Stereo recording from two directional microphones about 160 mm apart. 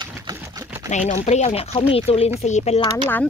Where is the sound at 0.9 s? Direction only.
50° left (ahead or behind).